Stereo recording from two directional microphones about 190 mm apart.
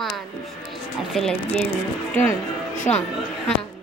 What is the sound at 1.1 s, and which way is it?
Speech, centre (ahead or behind).